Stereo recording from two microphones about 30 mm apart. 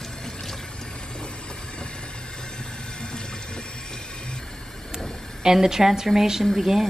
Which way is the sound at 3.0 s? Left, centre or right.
Left.